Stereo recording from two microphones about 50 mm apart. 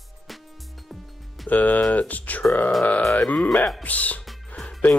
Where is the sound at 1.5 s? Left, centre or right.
Left.